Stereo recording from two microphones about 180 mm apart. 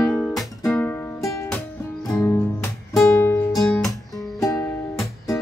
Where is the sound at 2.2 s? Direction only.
15° left (ahead or behind).